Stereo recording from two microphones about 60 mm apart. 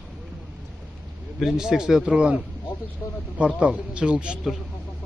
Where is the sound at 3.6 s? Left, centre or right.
Centre.